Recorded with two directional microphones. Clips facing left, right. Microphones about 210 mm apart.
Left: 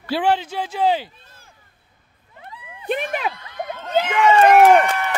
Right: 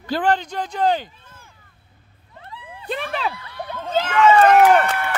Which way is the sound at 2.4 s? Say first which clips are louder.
Left 4 dB; 15° left (ahead or behind).